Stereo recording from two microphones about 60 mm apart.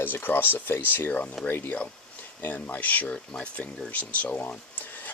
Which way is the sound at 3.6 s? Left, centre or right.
Left.